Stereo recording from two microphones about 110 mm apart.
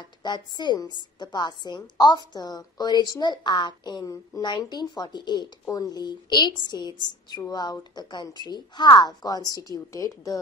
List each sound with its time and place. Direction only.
0.2 s a woman's voice: 40° left (ahead or behind)